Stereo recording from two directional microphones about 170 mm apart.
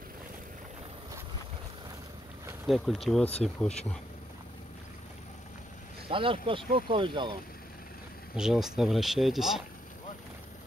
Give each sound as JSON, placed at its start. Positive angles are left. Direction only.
{"t": 2.6, "sound": "speech", "side_deg": 0}
{"t": 6.0, "sound": "speech", "side_deg": -30}
{"t": 8.4, "sound": "speech", "side_deg": -5}